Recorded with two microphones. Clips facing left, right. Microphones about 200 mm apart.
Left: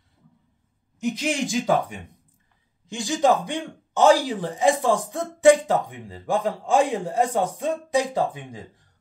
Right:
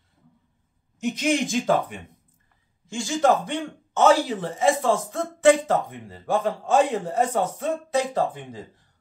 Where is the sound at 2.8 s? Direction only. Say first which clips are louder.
Even; 15° left (ahead or behind).